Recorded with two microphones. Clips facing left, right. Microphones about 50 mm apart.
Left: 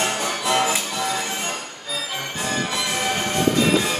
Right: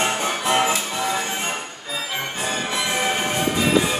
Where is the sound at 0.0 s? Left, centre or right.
Right.